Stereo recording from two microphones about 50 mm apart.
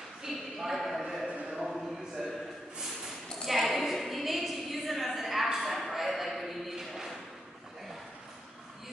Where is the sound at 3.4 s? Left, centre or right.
Centre.